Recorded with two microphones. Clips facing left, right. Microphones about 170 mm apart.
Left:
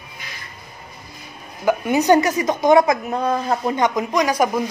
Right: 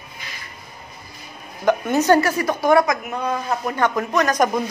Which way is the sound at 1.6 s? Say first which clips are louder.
Even; 10° left (ahead or behind).